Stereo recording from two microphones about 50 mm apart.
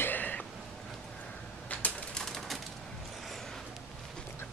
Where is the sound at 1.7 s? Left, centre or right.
Left.